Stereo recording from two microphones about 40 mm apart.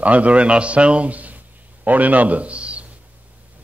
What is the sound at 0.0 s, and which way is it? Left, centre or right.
A man's voice, right.